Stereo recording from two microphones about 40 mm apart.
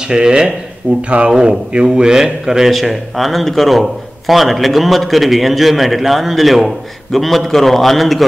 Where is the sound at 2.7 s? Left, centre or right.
Centre.